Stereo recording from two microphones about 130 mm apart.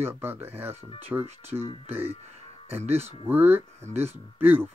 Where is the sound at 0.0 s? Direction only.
15° right (ahead or behind).